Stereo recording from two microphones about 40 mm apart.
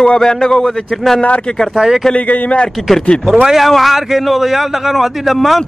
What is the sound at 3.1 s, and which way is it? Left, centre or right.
Speech, left.